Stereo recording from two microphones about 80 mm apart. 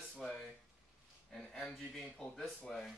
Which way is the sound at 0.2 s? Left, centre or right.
Centre.